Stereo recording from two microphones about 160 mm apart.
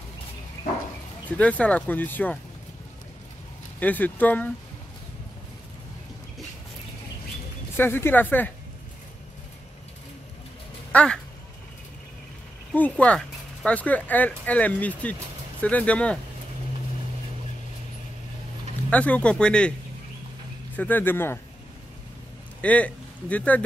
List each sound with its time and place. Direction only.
1.3 s speech: 10° left (ahead or behind)
3.8 s speech: 10° left (ahead or behind)
7.7 s speech: 15° left (ahead or behind)
10.9 s speech: 10° left (ahead or behind)
13.0 s speech: 10° left (ahead or behind)
18.9 s speech: 10° left (ahead or behind)
20.7 s speech: 10° left (ahead or behind)
22.6 s speech: 10° left (ahead or behind)